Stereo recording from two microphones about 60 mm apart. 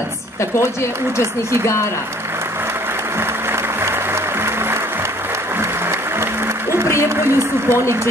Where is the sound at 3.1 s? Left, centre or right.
Right.